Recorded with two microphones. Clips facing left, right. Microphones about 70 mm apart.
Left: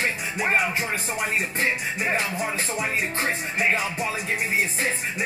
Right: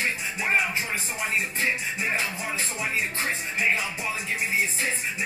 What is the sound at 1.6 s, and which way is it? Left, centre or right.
Music, left.